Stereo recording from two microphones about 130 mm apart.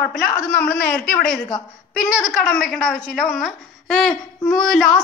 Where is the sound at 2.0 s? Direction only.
Centre (ahead or behind).